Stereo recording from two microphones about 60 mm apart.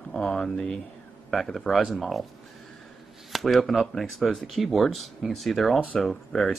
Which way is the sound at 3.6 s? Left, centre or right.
Centre.